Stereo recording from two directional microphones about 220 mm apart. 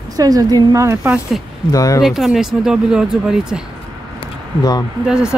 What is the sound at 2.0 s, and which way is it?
Speech, centre (ahead or behind).